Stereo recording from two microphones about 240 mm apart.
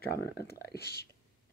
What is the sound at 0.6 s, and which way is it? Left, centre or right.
Speech, left.